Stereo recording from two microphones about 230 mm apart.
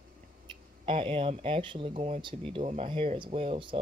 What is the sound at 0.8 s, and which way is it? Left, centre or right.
Speech, right.